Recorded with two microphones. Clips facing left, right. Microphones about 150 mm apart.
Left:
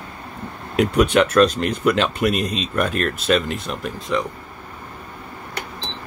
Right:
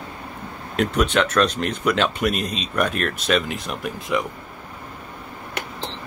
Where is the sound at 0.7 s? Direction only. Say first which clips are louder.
Left 4 dB; 10° left (ahead or behind).